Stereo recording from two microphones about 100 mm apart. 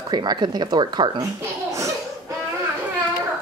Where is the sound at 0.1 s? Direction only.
50° right (ahead or behind).